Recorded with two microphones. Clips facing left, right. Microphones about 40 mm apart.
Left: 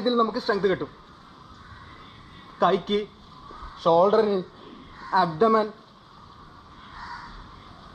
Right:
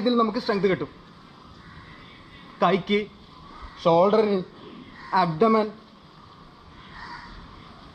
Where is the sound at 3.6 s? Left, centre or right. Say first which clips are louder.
Even; right.